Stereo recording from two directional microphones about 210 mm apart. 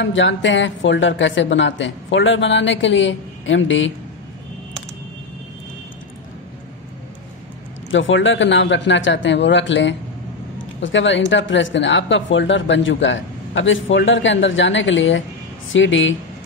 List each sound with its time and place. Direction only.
0.0 s speech: 60° left (ahead or behind)
7.9 s speech: 65° left (ahead or behind)